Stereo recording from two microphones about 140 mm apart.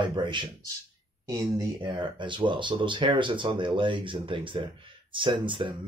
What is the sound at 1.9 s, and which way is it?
Speech, 35° right (ahead or behind).